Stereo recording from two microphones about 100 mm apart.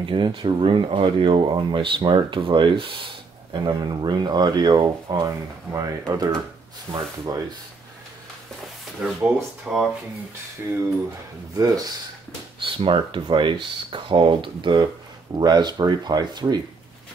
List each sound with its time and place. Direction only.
0.0 s speech: 55° right (ahead or behind)
3.5 s speech: 45° right (ahead or behind)
5.2 s speech: 35° right (ahead or behind)
6.9 s speech: 25° right (ahead or behind)
9.0 s speech: 5° right (ahead or behind)
10.6 s speech: 25° right (ahead or behind)
11.5 s speech: 40° right (ahead or behind)
12.6 s speech: 60° right (ahead or behind); by 16.6 s 45° right (ahead or behind)